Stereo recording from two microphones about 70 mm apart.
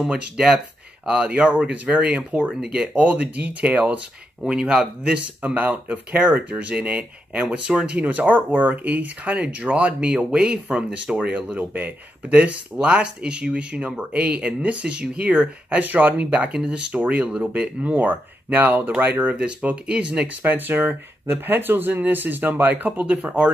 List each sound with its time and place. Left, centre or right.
0.0 s speech: centre
20.4 s speech: right